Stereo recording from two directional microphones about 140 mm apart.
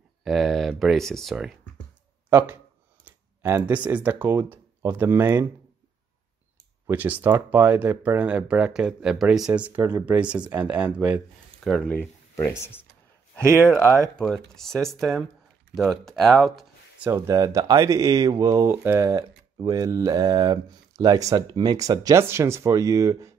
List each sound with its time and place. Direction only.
0.2 s speech: centre (ahead or behind)
2.2 s speech: 20° right (ahead or behind)
6.9 s speech: 10° right (ahead or behind)
11.6 s speech: 5° left (ahead or behind)
14.1 s speech: 5° left (ahead or behind)
17.0 s speech: 20° right (ahead or behind)